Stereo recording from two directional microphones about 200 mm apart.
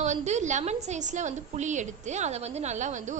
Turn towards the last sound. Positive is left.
turn(degrees=-35)  # may be behind; listen again after turning